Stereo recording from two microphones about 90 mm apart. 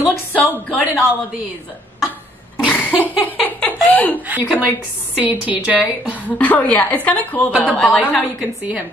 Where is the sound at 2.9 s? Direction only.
20° right (ahead or behind).